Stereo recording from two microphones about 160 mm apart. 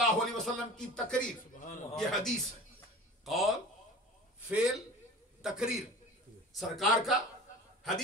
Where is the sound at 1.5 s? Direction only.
55° left (ahead or behind).